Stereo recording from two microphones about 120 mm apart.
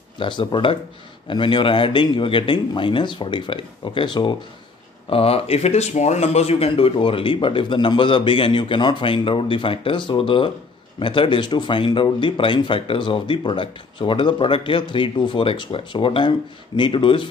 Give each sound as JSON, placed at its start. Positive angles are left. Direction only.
{"t": 0.2, "sound": "speech", "side_deg": 40}
{"t": 5.1, "sound": "speech", "side_deg": 55}